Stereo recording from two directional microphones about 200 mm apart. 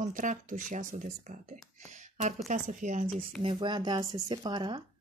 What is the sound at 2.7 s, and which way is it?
Speech, 40° right (ahead or behind).